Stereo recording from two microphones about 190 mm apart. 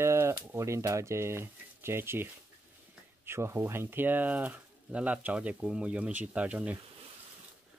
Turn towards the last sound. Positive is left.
turn(degrees=-5)  # may be behind; listen again after turning